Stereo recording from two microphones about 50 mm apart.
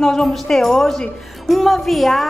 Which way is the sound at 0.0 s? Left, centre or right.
Centre.